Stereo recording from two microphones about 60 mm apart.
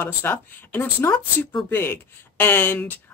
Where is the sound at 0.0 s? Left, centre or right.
Left.